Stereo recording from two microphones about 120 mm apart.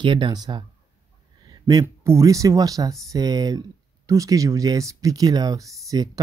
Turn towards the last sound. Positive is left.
turn(degrees=-30)  # may be behind; listen again after turning